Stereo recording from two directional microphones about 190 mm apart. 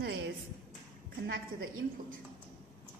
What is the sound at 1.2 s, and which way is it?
Speech, 65° right (ahead or behind).